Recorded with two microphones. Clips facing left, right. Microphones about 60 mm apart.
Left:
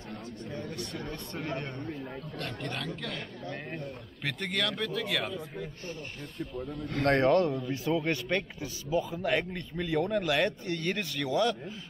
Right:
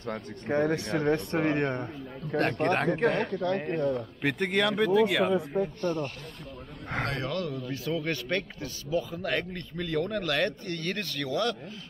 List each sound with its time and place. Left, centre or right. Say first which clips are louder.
0.5 s a man's voice: right 13 dB; right
3.3 s speech: right 10 dB; right
4.2 s speech: right 5 dB; right
5.0 s speech: right 8 dB; centre
5.3 s a man's voice: right 11 dB; right
7.1 s speech: left 12 dB; left
7.6 s a man's voice: left 2 dB; centre